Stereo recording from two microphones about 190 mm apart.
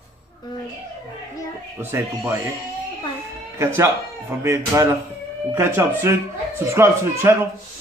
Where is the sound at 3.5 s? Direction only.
15° right (ahead or behind).